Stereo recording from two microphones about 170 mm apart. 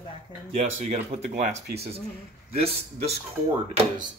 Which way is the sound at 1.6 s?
70° right (ahead or behind).